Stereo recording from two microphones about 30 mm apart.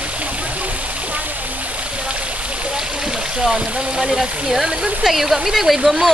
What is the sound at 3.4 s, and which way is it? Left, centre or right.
Speech, centre.